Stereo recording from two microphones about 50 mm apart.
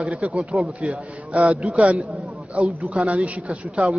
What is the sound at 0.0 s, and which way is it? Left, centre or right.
A man's voice, right.